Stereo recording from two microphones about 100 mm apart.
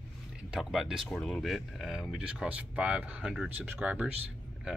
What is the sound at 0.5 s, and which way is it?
Speech, centre (ahead or behind).